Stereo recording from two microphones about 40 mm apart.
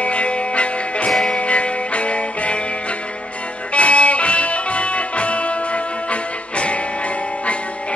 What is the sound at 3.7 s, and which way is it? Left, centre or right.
Music, left.